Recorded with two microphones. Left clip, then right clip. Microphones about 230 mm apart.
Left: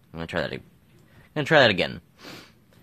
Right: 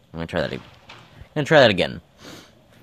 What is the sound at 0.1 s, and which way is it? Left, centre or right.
Speech, centre.